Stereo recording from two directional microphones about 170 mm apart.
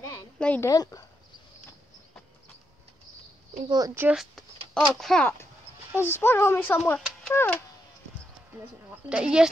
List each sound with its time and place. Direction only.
0.4 s speech: 10° left (ahead or behind)
0.7 s speech: 20° left (ahead or behind)
3.5 s a woman's voice: 25° right (ahead or behind)
4.1 s speech: centre (ahead or behind)
5.9 s speech: 15° left (ahead or behind)
9.1 s speech: 5° right (ahead or behind)